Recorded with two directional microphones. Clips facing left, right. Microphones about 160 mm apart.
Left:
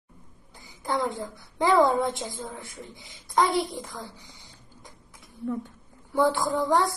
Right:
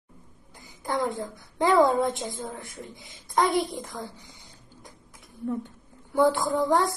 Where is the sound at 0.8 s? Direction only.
20° right (ahead or behind).